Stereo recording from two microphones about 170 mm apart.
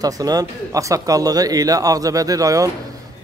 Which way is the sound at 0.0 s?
20° right (ahead or behind).